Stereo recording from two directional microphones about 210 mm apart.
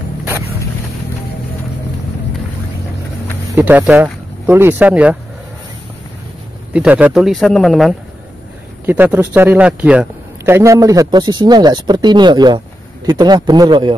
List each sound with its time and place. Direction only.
3.5 s speech: 10° right (ahead or behind)
6.7 s speech: 5° right (ahead or behind)
8.8 s a man's voice: 10° right (ahead or behind)